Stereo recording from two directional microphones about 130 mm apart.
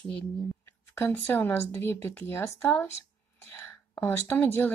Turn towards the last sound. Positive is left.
turn(degrees=15)  # may be behind; listen again after turning